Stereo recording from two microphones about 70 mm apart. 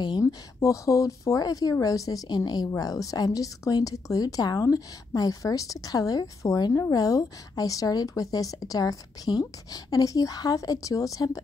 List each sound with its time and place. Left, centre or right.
0.2 s speech: left
2.7 s speech: left